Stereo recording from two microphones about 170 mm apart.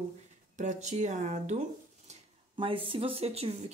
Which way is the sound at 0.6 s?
45° right (ahead or behind).